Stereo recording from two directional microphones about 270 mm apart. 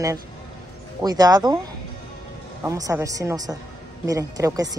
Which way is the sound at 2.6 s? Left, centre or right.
Centre.